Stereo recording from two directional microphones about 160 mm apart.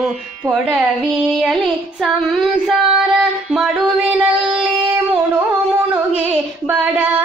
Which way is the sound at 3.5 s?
5° right (ahead or behind).